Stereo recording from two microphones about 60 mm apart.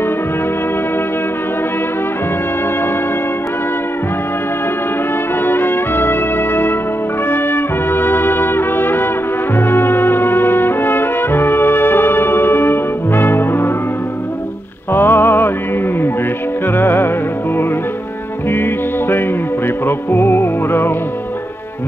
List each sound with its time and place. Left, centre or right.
5.4 s music: left
7.2 s trumpet: left
9.6 s brass instrument: left
14.9 s music: left
16.7 s music: left
18.5 s music: left